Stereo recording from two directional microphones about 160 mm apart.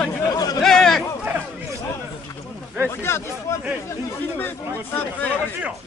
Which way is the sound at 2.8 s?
15° left (ahead or behind).